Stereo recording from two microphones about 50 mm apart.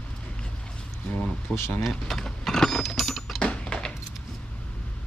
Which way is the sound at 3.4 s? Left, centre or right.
Left.